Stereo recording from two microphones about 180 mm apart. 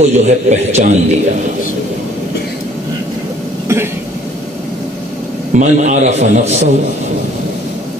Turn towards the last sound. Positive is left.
turn(degrees=-40)  # may be behind; listen again after turning